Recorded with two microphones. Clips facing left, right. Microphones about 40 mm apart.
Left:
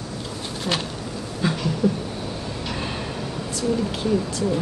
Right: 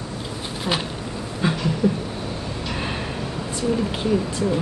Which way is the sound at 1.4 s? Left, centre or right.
Centre.